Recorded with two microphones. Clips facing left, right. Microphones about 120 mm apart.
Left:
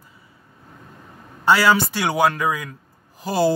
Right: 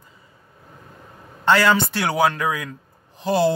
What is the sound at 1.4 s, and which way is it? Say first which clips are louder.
Speech: left 1 dB; 10° left (ahead or behind).